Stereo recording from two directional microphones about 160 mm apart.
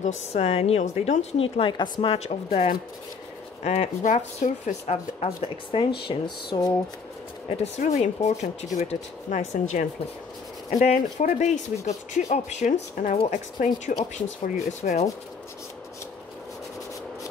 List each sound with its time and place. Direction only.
0.0 s a woman's voice: 40° left (ahead or behind); by 6.7 s 25° left (ahead or behind)
7.4 s speech: 45° left (ahead or behind)